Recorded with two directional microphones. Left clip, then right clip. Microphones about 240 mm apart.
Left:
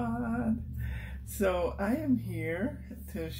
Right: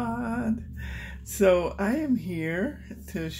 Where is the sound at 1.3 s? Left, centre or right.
Right.